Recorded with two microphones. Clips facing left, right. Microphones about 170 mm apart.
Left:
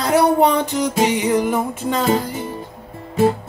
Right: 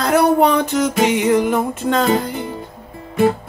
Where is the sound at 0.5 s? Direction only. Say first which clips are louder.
Right 2 dB; 15° left (ahead or behind).